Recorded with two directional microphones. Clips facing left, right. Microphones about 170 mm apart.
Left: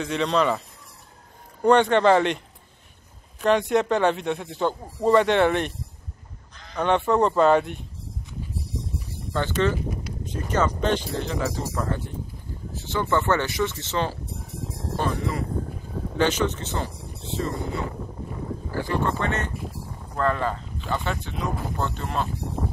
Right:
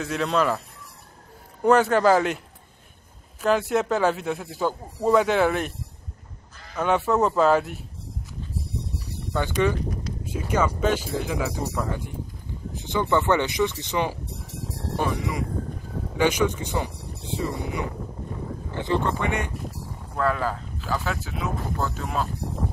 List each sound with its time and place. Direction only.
0.0 s speech: 5° right (ahead or behind)
1.6 s speech: 5° right (ahead or behind)
9.3 s speech: 10° right (ahead or behind)
12.7 s a sound: 15° right (ahead or behind)
13.1 s speech: 15° right (ahead or behind)